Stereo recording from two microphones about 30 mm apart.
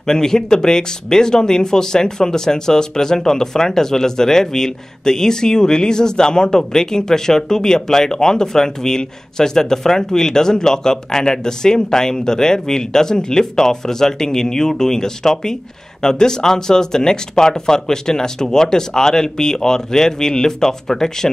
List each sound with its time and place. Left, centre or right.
0.0 s speech: centre